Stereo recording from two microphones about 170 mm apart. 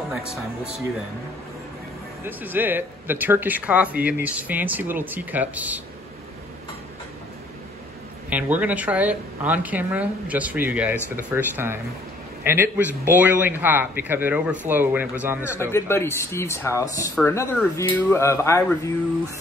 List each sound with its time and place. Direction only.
2.2 s speech: 10° right (ahead or behind)
8.3 s speech: 10° right (ahead or behind)
15.7 s speech: 15° left (ahead or behind)